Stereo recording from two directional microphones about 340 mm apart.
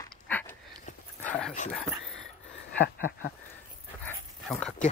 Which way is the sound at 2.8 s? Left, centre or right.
Left.